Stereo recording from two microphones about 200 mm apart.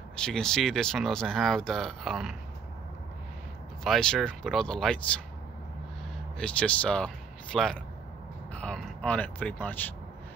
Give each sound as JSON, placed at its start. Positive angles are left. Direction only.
{"t": 0.1, "sound": "speech", "side_deg": 5}
{"t": 3.8, "sound": "speech", "side_deg": 0}
{"t": 6.3, "sound": "speech", "side_deg": 5}